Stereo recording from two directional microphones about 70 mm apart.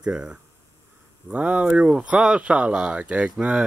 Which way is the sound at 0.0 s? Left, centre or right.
Centre.